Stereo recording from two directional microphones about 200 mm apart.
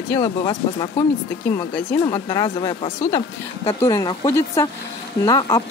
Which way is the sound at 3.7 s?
15° left (ahead or behind).